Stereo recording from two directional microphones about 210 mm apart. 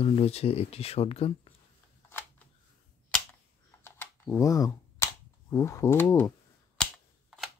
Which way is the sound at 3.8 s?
10° left (ahead or behind).